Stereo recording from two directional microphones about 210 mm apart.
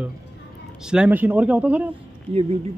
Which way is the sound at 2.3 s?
30° right (ahead or behind).